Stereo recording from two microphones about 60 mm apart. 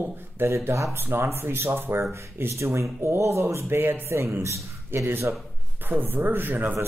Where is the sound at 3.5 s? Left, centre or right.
Right.